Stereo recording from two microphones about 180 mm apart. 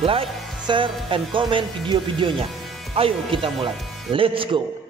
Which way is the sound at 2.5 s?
Centre (ahead or behind).